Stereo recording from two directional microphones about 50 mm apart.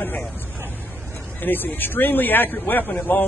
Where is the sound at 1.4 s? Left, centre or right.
Left.